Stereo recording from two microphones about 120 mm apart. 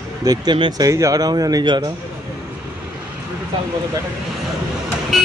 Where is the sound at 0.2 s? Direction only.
30° right (ahead or behind).